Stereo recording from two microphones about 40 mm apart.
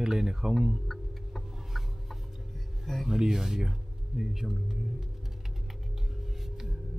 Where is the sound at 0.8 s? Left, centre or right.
Centre.